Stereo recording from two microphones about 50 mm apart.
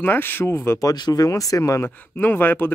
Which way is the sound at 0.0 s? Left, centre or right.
Left.